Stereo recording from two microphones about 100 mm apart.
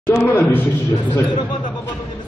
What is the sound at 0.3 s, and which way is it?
Speech, 20° left (ahead or behind).